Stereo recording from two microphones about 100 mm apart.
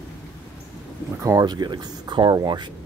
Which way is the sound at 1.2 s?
35° right (ahead or behind).